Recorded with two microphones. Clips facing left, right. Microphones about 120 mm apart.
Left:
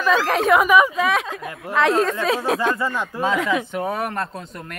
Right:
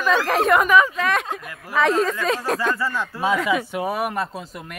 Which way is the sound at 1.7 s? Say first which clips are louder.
Left 1 dB; centre (ahead or behind).